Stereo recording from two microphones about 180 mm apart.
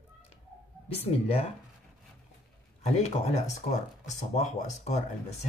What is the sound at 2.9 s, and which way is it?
Speech, 40° left (ahead or behind).